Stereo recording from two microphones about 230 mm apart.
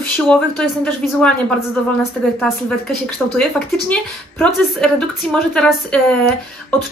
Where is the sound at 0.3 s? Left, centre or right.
Centre.